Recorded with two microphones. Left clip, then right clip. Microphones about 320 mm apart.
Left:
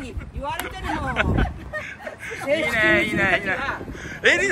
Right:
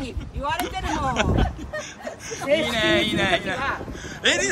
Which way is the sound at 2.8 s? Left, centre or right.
Centre.